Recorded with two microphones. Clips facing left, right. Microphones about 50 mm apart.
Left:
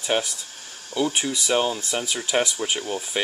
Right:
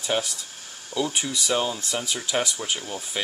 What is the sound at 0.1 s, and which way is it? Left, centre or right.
Speech, left.